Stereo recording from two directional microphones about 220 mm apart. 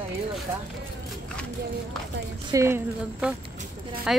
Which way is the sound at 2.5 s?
10° right (ahead or behind).